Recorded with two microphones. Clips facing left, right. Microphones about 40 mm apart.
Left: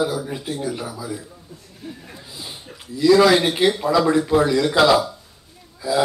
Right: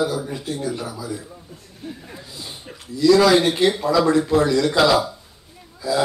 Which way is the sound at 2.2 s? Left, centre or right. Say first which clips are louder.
Even; centre.